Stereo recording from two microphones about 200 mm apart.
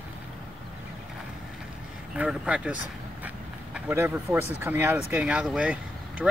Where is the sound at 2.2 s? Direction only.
5° right (ahead or behind).